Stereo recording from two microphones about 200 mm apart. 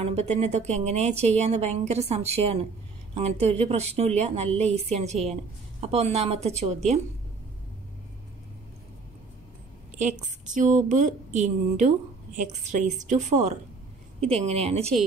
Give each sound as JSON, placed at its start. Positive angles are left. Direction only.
{"t": 0.0, "sound": "speech", "side_deg": -30}
{"t": 9.9, "sound": "speech", "side_deg": -40}